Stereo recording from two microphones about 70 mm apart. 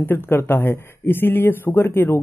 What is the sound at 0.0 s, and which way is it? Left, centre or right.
Speech, left.